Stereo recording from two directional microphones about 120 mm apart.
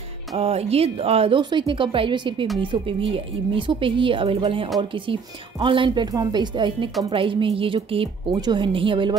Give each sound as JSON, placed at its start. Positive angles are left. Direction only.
{"t": 0.4, "sound": "a woman's voice", "side_deg": -55}
{"t": 8.3, "sound": "a woman's voice", "side_deg": -35}